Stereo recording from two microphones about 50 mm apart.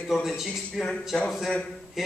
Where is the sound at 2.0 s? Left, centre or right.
Centre.